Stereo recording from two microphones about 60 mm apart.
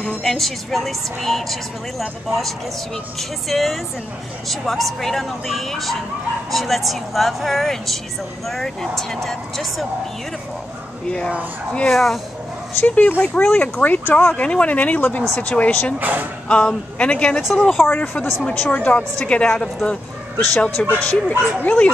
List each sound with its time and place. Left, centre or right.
0.2 s a woman's voice: centre
11.1 s a man's voice: centre
11.9 s a woman's voice: centre
12.8 s speech: left
16.0 s speech: right
16.4 s a man's voice: centre
17.8 s a man's voice: left; by 20.0 s centre
20.3 s speech: left